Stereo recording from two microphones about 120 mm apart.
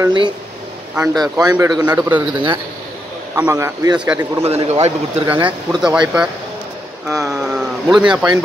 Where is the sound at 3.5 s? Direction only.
30° right (ahead or behind).